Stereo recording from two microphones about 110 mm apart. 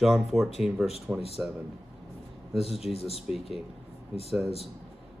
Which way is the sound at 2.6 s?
65° left (ahead or behind).